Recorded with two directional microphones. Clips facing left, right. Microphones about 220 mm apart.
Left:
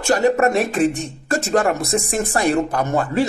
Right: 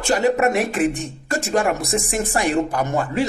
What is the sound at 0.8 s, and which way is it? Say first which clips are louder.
Speech: left 2 dB; 15° right (ahead or behind).